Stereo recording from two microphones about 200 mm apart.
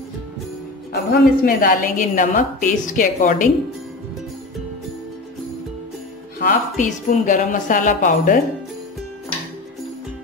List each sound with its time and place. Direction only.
1.1 s a woman's voice: 45° left (ahead or behind)
6.4 s a woman's voice: 40° left (ahead or behind)